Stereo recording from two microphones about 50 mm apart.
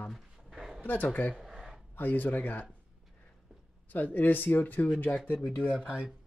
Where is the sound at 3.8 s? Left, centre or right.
Left.